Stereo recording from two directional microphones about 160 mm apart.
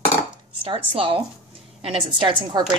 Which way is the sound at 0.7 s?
35° right (ahead or behind).